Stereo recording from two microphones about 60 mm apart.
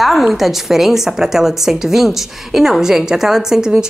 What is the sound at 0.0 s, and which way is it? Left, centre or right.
A woman's voice, centre.